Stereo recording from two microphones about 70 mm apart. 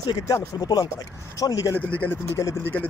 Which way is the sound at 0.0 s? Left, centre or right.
Left.